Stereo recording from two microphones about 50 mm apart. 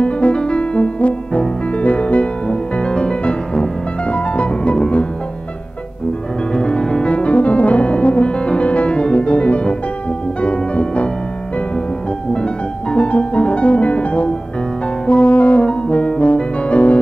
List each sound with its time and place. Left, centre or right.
0.0 s music: left
6.5 s music: centre
12.9 s music: left